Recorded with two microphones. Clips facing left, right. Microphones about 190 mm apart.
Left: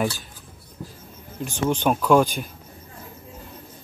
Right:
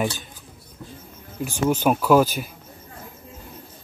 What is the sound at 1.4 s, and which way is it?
Speech, 5° right (ahead or behind).